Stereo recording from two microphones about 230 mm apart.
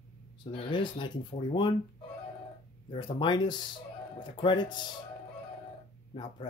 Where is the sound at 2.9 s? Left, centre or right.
Centre.